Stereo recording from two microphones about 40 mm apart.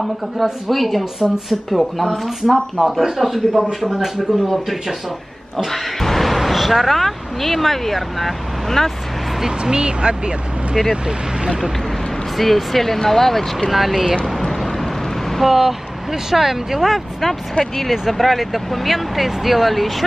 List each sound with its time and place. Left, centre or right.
0.0 s speech: centre
5.7 s speech: centre
9.6 s speech: right
10.9 s speech: centre
12.4 s speech: centre
14.2 s vehicle: centre
15.4 s speech: centre